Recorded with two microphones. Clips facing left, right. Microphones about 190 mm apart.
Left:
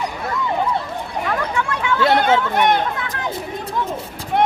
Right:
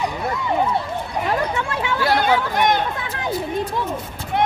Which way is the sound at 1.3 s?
25° right (ahead or behind).